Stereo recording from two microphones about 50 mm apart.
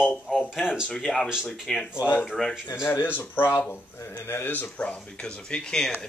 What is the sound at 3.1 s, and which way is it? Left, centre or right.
Speech, left.